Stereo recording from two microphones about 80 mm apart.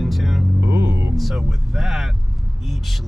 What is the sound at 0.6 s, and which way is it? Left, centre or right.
Speech, right.